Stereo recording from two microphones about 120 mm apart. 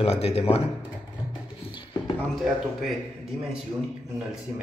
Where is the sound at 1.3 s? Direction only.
40° left (ahead or behind).